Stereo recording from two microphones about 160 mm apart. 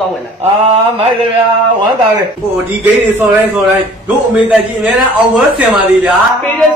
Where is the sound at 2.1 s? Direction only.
10° right (ahead or behind).